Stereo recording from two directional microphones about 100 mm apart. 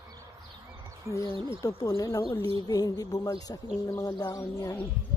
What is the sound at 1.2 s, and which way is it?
Speech, 55° right (ahead or behind).